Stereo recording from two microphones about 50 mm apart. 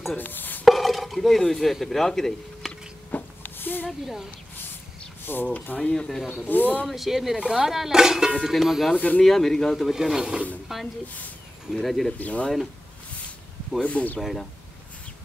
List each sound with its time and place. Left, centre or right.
0.2 s chopping: left
0.7 s speech: centre
3.1 s a sound: left
3.8 s speech: centre
5.2 s speech: left
5.8 s speech: centre
6.2 s speech: left
6.9 s speech: centre
8.9 s speech: left
9.2 s speech: centre
9.8 s speech: centre
11.7 s speech: centre
12.2 s speech: left
13.8 s speech: left